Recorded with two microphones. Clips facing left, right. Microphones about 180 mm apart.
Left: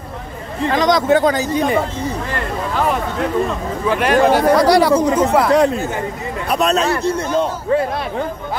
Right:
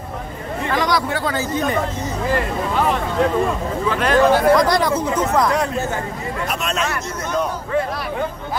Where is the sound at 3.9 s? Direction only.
15° left (ahead or behind).